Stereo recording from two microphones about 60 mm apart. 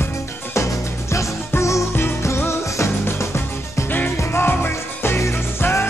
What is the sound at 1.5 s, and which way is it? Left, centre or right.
Music, left.